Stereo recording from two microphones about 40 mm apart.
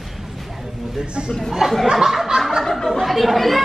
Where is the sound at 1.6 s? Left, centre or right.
Centre.